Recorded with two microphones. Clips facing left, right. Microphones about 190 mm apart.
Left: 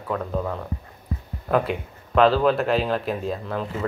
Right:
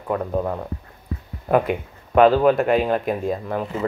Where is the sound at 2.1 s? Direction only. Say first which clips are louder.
Right 3 dB; 10° right (ahead or behind).